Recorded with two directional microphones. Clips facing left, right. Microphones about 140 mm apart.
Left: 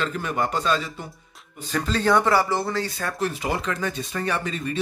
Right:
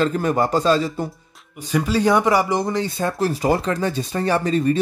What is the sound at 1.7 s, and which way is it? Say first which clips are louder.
Speech: right 4 dB; 10° right (ahead or behind).